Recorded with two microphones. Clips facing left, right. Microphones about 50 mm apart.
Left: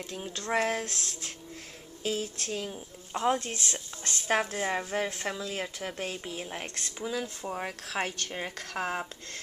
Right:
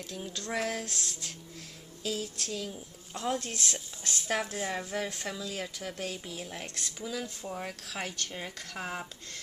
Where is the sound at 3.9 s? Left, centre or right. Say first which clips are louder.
Left 6 dB; left.